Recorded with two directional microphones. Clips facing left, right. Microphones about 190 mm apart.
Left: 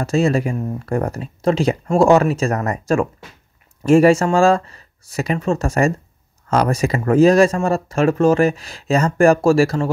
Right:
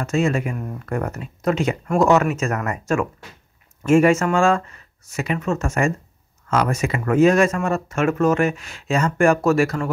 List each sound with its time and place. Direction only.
0.0 s speech: 35° left (ahead or behind)